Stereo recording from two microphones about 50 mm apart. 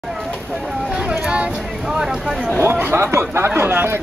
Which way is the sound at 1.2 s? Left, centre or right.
Right.